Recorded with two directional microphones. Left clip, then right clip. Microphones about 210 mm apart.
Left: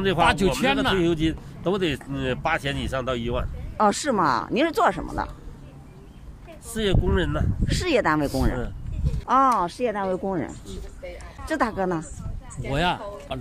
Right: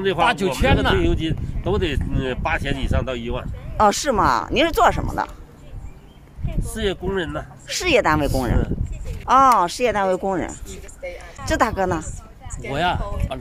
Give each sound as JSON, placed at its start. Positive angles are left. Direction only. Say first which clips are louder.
{"t": 0.2, "sound": "speech", "louder": "right 1 dB", "side_deg": -10}
{"t": 1.0, "sound": "speech", "louder": "even", "side_deg": 20}
{"t": 3.7, "sound": "speech", "louder": "right 4 dB", "side_deg": -10}
{"t": 6.7, "sound": "speech", "louder": "right 1 dB", "side_deg": 5}
{"t": 7.6, "sound": "speech", "louder": "right 5 dB", "side_deg": -10}
{"t": 9.2, "sound": "speech", "louder": "right 6 dB", "side_deg": -10}
{"t": 10.7, "sound": "speech", "louder": "right 5 dB", "side_deg": -55}
{"t": 11.4, "sound": "speech", "louder": "right 5 dB", "side_deg": -10}